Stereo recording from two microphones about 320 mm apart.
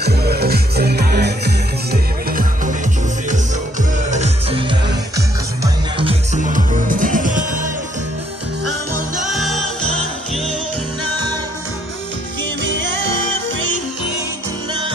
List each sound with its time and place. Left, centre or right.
0.0 s music: right
4.1 s music: centre
9.2 s music: centre
12.6 s music: right